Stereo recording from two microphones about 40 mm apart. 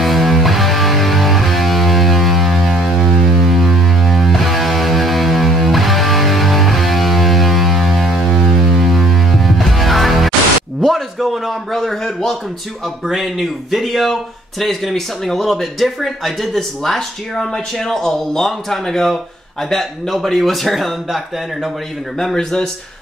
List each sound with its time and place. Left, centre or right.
0.0 s music: centre
10.8 s a sound: centre
13.0 s speech: centre
22.2 s speech: centre